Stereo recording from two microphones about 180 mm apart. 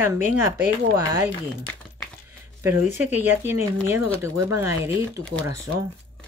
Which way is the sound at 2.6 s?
10° right (ahead or behind).